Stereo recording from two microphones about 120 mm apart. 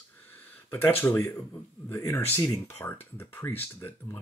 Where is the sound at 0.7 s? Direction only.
15° left (ahead or behind).